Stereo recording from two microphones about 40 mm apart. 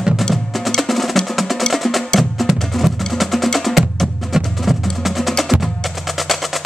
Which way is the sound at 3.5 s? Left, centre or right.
Centre.